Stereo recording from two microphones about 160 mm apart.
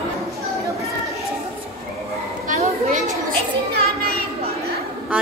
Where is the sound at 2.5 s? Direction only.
50° right (ahead or behind).